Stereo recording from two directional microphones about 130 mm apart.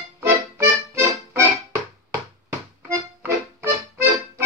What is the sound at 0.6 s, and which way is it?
Music, 20° right (ahead or behind).